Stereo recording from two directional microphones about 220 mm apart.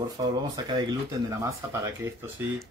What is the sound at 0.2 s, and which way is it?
Speech, 15° right (ahead or behind).